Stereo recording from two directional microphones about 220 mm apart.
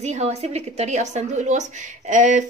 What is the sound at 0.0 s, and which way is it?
A woman's voice, 30° right (ahead or behind).